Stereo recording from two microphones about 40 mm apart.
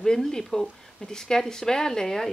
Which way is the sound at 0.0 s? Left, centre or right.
Centre.